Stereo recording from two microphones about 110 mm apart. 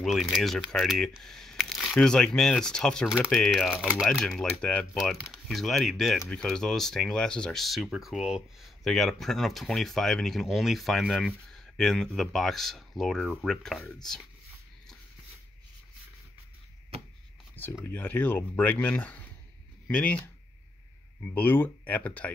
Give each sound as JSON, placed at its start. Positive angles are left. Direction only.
{"t": 0.0, "sound": "speech", "side_deg": 0}
{"t": 3.1, "sound": "speech", "side_deg": -5}
{"t": 3.3, "sound": "speech", "side_deg": 5}
{"t": 4.9, "sound": "speech", "side_deg": 0}
{"t": 17.8, "sound": "speech", "side_deg": 15}
{"t": 21.3, "sound": "speech", "side_deg": 15}